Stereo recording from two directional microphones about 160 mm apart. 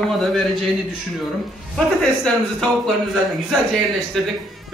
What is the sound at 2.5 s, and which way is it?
A man's voice, centre (ahead or behind).